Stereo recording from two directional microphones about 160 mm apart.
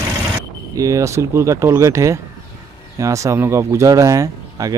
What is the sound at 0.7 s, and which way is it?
Speech, 20° right (ahead or behind).